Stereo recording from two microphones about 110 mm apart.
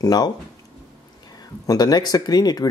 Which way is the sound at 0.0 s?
40° left (ahead or behind).